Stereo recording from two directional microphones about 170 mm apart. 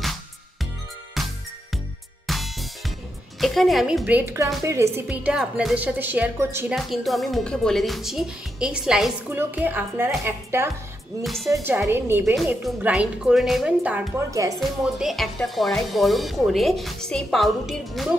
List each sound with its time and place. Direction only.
1.2 s music: centre (ahead or behind)
3.3 s speech: centre (ahead or behind); by 5.0 s 15° right (ahead or behind)
5.0 s speech: 5° right (ahead or behind)
6.7 s speech: centre (ahead or behind)
11.2 s speech: centre (ahead or behind)
11.6 s speech: 15° right (ahead or behind)
14.6 s speech: centre (ahead or behind)